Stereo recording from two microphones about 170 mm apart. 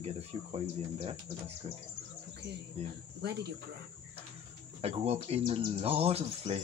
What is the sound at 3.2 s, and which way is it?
Cricket, 75° right (ahead or behind).